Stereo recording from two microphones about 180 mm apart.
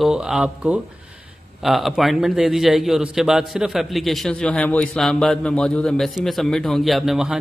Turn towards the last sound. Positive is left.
turn(degrees=0)  # may be behind; listen again after turning